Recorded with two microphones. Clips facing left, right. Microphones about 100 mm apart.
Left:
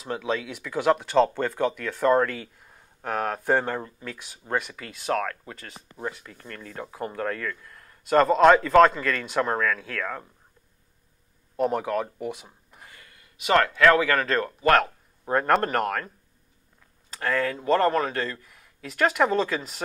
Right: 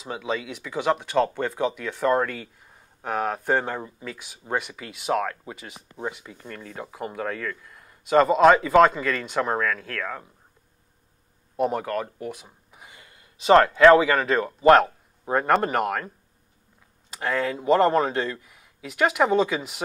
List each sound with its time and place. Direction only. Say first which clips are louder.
0.0 s speech: left 1 dB; 5° right (ahead or behind)
11.5 s speech: even; centre (ahead or behind)
12.8 s speech: right 1 dB; 20° right (ahead or behind)
15.2 s speech: right 1 dB; 5° right (ahead or behind)
17.1 s speech: even; 10° right (ahead or behind)
18.4 s speech: right 1 dB; 5° right (ahead or behind)